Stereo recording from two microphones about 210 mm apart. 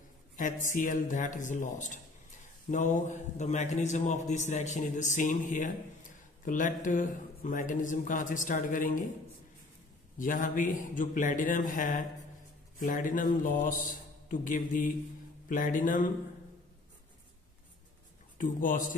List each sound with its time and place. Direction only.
0.4 s a man's voice: 40° left (ahead or behind)
10.1 s a man's voice: 40° left (ahead or behind)
18.4 s a man's voice: 40° left (ahead or behind)